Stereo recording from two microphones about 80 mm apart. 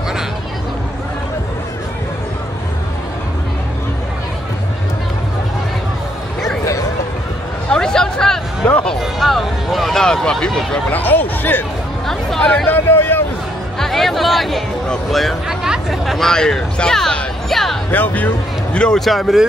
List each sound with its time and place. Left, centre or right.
7.7 s a sound: centre
8.6 s music: centre
9.0 s a sound: centre
10.9 s speech: left
12.1 s speech: centre
12.6 s speech: left
13.7 s music: centre
17.9 s speech: left
18.9 s speech: centre